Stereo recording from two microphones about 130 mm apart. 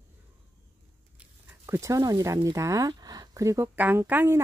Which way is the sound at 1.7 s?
25° right (ahead or behind).